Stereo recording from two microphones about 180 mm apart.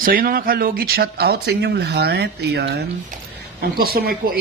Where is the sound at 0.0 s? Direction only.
55° right (ahead or behind).